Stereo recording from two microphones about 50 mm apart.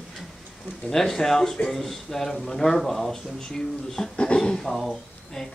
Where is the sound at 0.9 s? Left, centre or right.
Centre.